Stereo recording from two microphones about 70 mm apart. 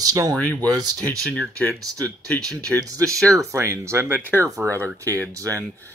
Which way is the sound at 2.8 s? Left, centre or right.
Right.